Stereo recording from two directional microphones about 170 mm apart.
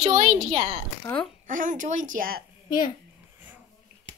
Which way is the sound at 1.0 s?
10° left (ahead or behind).